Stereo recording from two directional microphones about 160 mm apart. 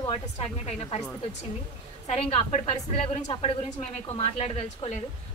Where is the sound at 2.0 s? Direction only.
40° left (ahead or behind).